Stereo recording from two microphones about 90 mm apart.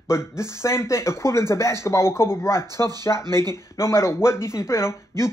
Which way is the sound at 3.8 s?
30° left (ahead or behind).